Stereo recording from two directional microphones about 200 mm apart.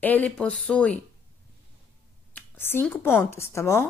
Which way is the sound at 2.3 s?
10° left (ahead or behind).